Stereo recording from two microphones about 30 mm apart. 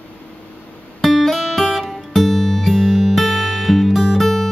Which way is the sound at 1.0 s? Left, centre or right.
Centre.